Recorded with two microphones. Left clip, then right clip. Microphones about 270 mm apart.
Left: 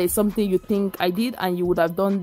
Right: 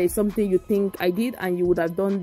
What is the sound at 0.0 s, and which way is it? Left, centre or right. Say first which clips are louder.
Speech: even; centre.